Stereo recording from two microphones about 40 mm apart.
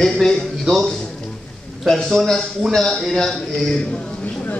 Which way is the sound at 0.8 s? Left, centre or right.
Centre.